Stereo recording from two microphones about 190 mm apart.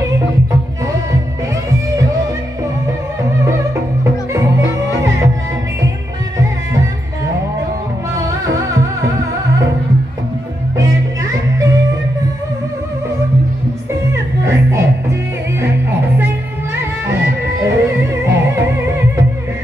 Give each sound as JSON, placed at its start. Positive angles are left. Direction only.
{"t": 4.3, "sound": "music", "side_deg": -15}
{"t": 8.2, "sound": "music", "side_deg": -15}
{"t": 14.1, "sound": "music", "side_deg": -15}
{"t": 17.6, "sound": "music", "side_deg": -15}